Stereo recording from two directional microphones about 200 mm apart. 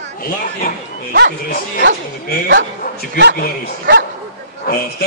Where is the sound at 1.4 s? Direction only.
50° left (ahead or behind).